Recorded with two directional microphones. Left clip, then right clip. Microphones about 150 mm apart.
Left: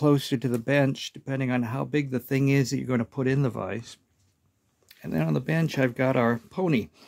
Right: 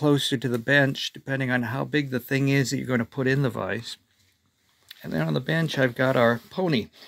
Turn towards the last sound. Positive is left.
turn(degrees=25)  # may be behind; listen again after turning